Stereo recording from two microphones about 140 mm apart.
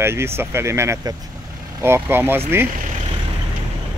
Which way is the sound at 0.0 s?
15° right (ahead or behind).